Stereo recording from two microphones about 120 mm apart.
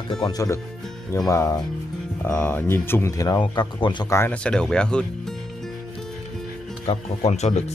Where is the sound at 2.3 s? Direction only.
15° left (ahead or behind); by 4.0 s 40° left (ahead or behind).